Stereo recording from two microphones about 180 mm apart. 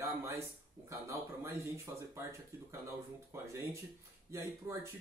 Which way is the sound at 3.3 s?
15° right (ahead or behind).